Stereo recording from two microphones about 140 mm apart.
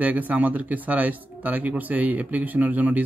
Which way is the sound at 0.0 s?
10° right (ahead or behind).